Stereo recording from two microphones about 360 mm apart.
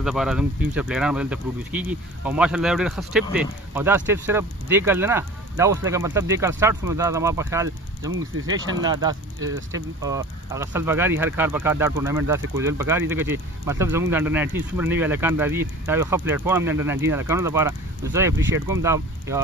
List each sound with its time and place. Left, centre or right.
0.0 s speech: centre